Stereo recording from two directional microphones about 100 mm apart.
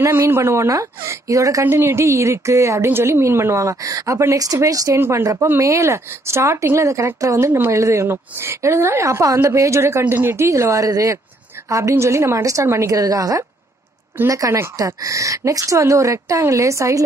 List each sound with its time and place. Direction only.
0.0 s speech: 25° right (ahead or behind)